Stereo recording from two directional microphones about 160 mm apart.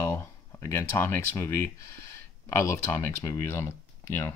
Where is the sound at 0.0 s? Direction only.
15° left (ahead or behind).